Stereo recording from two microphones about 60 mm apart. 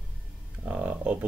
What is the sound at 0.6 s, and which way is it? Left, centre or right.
Speech, centre.